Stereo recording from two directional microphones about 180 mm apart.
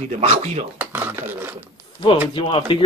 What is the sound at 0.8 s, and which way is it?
Speech, 10° right (ahead or behind).